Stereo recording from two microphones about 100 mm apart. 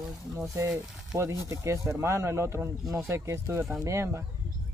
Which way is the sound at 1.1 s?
30° right (ahead or behind).